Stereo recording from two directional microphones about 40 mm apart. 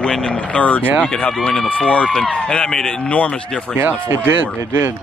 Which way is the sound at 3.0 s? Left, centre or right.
Left.